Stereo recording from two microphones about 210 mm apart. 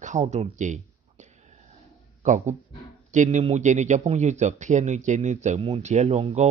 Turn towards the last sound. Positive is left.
turn(degrees=-30)  # may be behind; listen again after turning